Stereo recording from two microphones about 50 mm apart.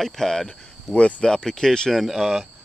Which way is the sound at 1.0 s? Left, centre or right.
Left.